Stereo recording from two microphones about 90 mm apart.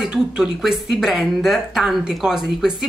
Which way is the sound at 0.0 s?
5° right (ahead or behind).